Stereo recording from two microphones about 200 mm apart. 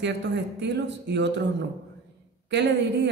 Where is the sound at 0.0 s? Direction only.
60° right (ahead or behind).